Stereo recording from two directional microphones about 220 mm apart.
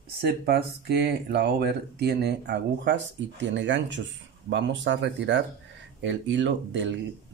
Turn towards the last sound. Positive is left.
turn(degrees=-55)  # may be behind; listen again after turning